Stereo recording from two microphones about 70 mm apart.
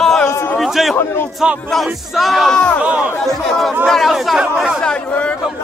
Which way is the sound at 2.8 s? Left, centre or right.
Centre.